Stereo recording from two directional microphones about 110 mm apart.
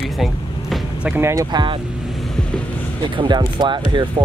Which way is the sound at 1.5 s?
50° right (ahead or behind).